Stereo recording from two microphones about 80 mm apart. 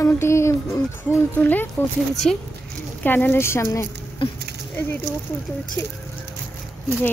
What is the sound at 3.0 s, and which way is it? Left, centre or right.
Speech, left.